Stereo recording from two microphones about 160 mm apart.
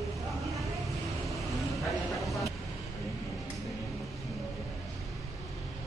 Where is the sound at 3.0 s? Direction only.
Centre (ahead or behind).